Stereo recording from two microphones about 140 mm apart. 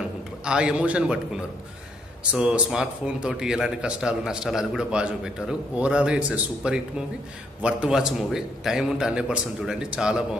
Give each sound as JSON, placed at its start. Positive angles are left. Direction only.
{"t": 0.5, "sound": "a man's voice", "side_deg": -5}